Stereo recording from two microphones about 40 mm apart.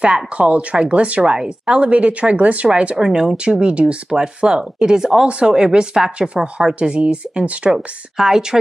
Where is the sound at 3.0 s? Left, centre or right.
Centre.